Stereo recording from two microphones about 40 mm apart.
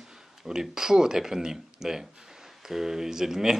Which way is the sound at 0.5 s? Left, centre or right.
Centre.